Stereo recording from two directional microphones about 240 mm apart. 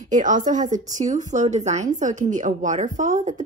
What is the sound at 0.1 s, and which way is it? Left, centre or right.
A woman's voice, right.